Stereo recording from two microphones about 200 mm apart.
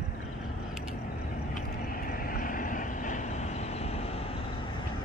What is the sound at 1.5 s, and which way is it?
Vehicle, 45° left (ahead or behind).